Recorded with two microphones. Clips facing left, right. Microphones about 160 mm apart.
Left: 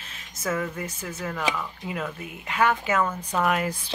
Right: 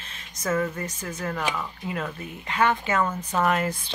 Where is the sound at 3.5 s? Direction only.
10° left (ahead or behind).